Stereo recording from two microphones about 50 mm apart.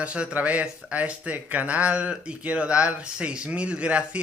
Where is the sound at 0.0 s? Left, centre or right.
Right.